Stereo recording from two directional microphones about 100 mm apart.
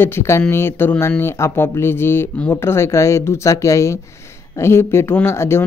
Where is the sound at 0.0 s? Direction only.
25° left (ahead or behind).